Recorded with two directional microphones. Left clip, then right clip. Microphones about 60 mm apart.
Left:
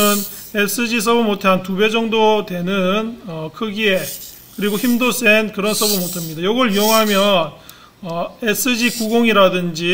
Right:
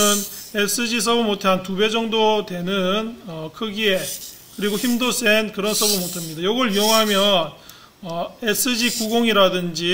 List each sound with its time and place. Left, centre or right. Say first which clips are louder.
0.0 s a sound: left 2 dB; centre
0.6 s a man's voice: left 3 dB; left
3.3 s a man's voice: left 4 dB; centre
3.9 s speech: left 3 dB; centre
5.0 s a man's voice: left 4 dB; left
5.6 s speech: left 3 dB; centre
6.4 s speech: left 4 dB; left
6.7 s speech: left 1 dB; centre
8.2 s a man's voice: left 3 dB; left
8.8 s speech: left 4 dB; centre
9.2 s speech: left 4 dB; left